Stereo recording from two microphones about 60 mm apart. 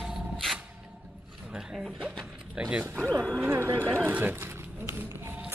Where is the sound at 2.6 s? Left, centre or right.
Right.